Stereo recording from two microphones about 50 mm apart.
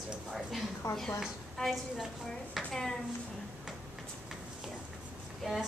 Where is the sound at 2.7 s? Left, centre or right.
Centre.